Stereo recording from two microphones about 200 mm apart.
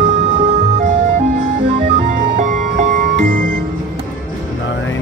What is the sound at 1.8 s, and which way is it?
Music, 30° right (ahead or behind).